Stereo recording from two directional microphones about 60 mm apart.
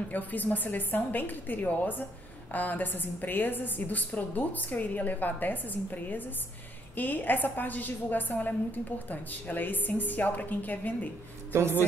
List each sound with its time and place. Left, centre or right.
0.1 s a woman's voice: left
11.5 s speech: right